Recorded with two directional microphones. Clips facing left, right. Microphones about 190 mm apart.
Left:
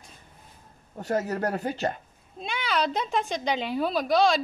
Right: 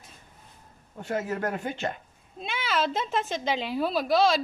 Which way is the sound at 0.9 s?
40° left (ahead or behind).